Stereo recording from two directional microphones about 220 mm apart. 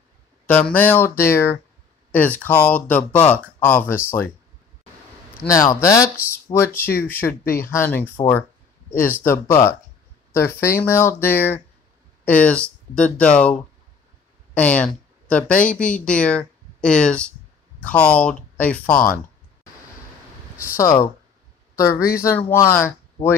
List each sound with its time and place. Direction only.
0.5 s speech: 5° left (ahead or behind)
5.3 s a woman's voice: 10° left (ahead or behind)
20.8 s speech: 15° left (ahead or behind)
23.2 s speech: 30° left (ahead or behind)